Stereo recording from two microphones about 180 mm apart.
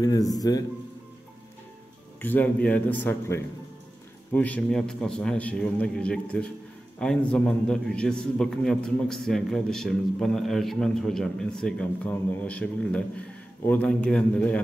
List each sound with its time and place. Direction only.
0.0 s speech: 20° left (ahead or behind)
2.2 s a man's voice: 10° left (ahead or behind)